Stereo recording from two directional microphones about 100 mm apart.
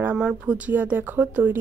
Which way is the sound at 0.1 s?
10° right (ahead or behind).